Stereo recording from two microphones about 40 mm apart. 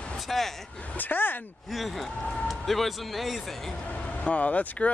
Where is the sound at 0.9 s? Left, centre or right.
Left.